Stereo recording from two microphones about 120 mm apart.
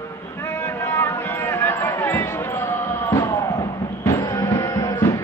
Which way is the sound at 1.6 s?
20° left (ahead or behind).